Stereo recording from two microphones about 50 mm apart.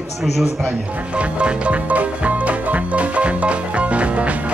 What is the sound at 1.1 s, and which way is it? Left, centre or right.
Music, right.